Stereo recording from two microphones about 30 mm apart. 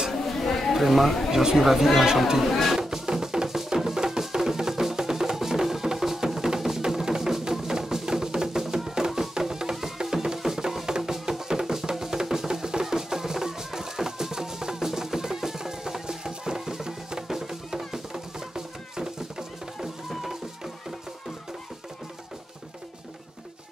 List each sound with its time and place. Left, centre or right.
0.1 s a sound: centre
0.7 s speech: centre
1.3 s speech: centre
2.7 s music: centre
20.1 s music: centre